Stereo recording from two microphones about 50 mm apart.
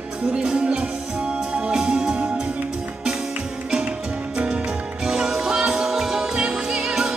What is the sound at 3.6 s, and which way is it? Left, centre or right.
Music, centre.